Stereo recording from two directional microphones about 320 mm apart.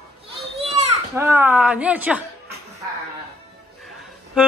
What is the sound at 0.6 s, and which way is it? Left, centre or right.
Children playing, centre.